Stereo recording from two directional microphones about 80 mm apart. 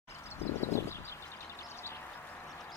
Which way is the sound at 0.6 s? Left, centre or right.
Left.